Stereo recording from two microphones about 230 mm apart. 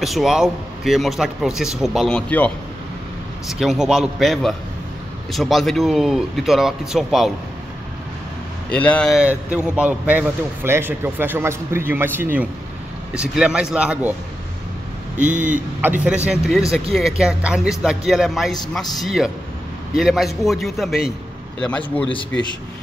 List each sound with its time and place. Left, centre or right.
0.0 s a man's voice: centre
8.6 s a man's voice: centre
15.1 s speech: right
15.8 s a man's voice: centre